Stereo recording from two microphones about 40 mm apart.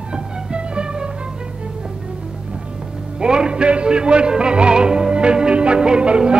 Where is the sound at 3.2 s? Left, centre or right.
Right.